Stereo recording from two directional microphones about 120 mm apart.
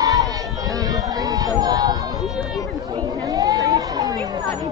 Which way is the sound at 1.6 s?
30° right (ahead or behind).